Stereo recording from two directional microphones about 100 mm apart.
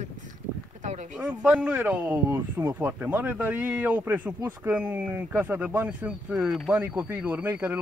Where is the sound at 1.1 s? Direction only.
10° right (ahead or behind).